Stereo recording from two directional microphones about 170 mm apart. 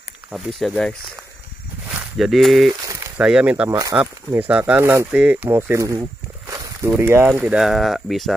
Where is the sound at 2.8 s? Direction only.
15° right (ahead or behind).